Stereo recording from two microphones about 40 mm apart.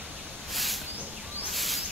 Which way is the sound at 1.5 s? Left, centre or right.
Centre.